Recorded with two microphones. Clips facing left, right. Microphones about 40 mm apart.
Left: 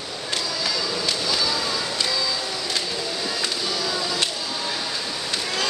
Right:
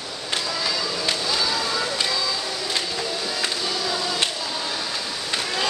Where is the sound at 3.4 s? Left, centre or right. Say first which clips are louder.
Even; centre.